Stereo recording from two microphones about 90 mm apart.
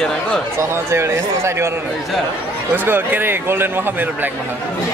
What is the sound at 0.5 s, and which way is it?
Speech, 30° right (ahead or behind).